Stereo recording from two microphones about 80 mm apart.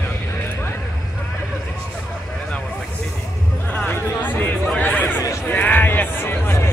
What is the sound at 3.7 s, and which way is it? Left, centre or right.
Chatter, centre.